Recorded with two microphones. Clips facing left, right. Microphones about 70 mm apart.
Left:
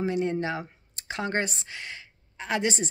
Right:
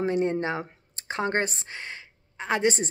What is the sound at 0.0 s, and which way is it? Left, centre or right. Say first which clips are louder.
Speech: right 2 dB; right.